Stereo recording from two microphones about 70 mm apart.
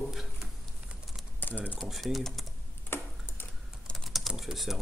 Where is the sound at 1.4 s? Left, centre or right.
Left.